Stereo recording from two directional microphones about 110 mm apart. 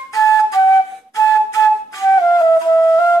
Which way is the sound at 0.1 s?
30° left (ahead or behind).